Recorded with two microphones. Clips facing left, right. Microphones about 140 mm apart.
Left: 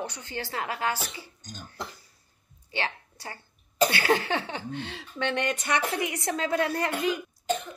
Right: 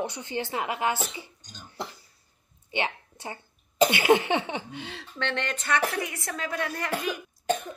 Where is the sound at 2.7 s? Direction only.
20° right (ahead or behind).